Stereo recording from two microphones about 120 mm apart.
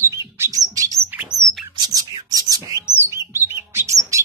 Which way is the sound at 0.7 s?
30° right (ahead or behind).